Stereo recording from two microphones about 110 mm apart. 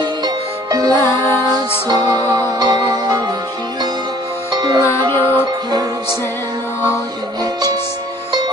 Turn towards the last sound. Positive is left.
turn(degrees=-35)  # may be behind; listen again after turning